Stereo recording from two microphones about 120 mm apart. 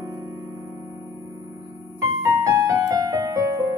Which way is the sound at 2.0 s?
25° right (ahead or behind).